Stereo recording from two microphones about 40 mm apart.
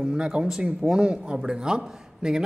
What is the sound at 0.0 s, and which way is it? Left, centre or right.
A man's voice, centre.